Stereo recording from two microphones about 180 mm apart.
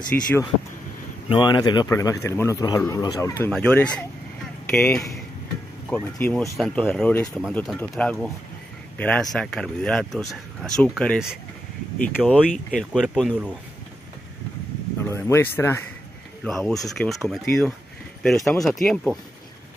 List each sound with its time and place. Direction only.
0.1 s speech: 10° left (ahead or behind)
1.3 s speech: 25° left (ahead or behind)
3.5 s speech: 5° left (ahead or behind)
15.0 s speech: 15° left (ahead or behind)
16.4 s speech: centre (ahead or behind)